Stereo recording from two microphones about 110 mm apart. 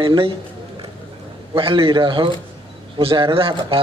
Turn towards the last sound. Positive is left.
turn(degrees=-55)  # may be behind; listen again after turning